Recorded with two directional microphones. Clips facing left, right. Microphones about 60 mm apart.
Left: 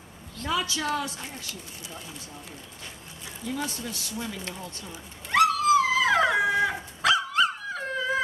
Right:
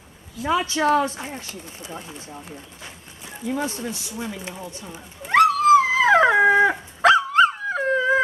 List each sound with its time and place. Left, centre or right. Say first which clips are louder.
0.5 s speech: right 8 dB; right
3.4 s speech: right 6 dB; right
5.3 s dog: right 6 dB; right